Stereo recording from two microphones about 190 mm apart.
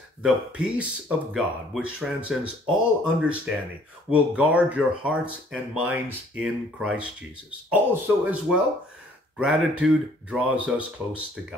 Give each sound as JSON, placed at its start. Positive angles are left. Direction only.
{"t": 0.2, "sound": "speech", "side_deg": -5}